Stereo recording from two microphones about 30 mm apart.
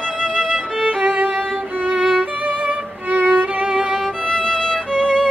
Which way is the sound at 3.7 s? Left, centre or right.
Right.